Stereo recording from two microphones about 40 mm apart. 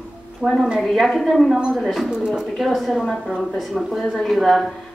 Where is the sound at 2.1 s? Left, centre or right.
Right.